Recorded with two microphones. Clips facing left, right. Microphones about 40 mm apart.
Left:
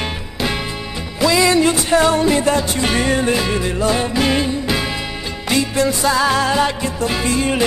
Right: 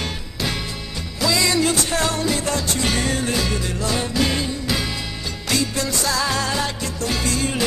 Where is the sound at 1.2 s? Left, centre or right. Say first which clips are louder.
Left 6 dB; left.